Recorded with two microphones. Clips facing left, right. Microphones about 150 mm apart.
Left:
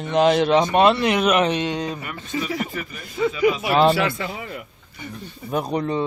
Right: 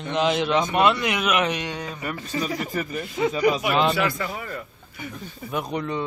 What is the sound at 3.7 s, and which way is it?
Speech, 35° left (ahead or behind).